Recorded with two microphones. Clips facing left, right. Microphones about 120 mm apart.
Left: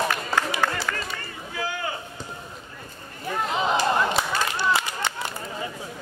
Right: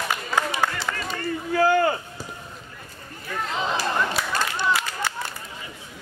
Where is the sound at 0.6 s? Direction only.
25° right (ahead or behind).